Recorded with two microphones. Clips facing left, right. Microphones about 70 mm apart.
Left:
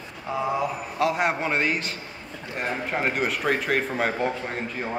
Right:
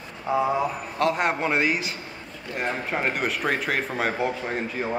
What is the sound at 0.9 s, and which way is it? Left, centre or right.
Speech, centre.